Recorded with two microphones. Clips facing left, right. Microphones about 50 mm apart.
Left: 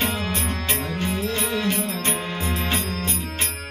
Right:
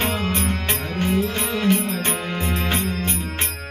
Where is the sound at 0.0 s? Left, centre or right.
Right.